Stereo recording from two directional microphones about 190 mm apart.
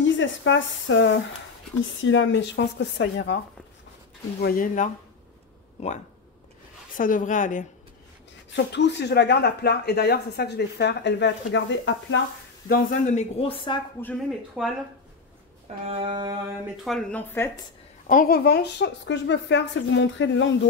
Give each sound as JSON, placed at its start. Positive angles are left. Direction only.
{"t": 0.0, "sound": "speech", "side_deg": 75}
{"t": 4.4, "sound": "speech", "side_deg": 50}
{"t": 7.0, "sound": "speech", "side_deg": 45}
{"t": 8.5, "sound": "speech", "side_deg": 65}
{"t": 12.6, "sound": "speech", "side_deg": 45}
{"t": 14.0, "sound": "speech", "side_deg": 5}
{"t": 15.8, "sound": "a sound", "side_deg": -30}
{"t": 16.8, "sound": "speech", "side_deg": 0}
{"t": 18.0, "sound": "speech", "side_deg": 45}